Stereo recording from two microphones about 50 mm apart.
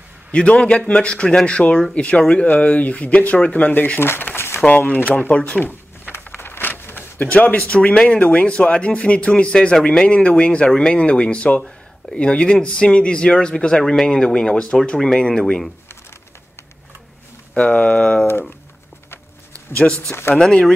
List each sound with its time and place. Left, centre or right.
0.3 s speech: left
4.0 s speech: left
4.6 s speech: left
5.6 s a sound: left
7.3 s speech: left
7.7 s speech: centre
17.6 s speech: left
20.1 s speech: left
20.3 s speech: centre